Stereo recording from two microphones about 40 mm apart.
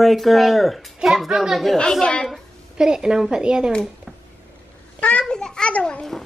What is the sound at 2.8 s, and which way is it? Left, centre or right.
Speech, centre.